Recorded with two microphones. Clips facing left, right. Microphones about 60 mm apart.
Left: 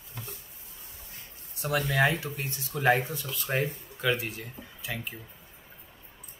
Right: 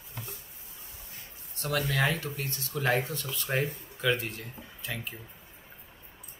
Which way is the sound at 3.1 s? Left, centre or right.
Centre.